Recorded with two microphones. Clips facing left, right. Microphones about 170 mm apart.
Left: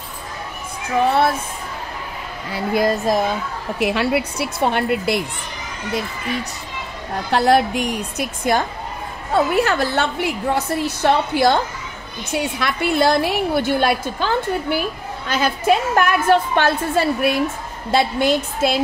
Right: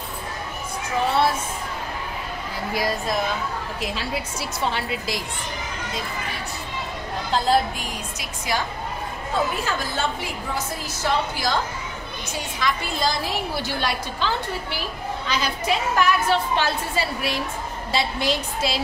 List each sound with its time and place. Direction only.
2.5 s a woman's voice: 55° left (ahead or behind)
3.8 s a woman's voice: 65° left (ahead or behind)
7.2 s a woman's voice: 75° left (ahead or behind); by 8.6 s 55° left (ahead or behind)
9.3 s a woman's voice: 70° left (ahead or behind); by 18.8 s 50° left (ahead or behind)